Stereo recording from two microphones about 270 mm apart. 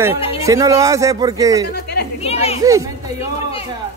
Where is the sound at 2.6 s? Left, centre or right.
Centre.